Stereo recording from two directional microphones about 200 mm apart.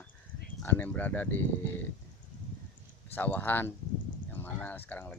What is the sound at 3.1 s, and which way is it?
Speech, 10° left (ahead or behind).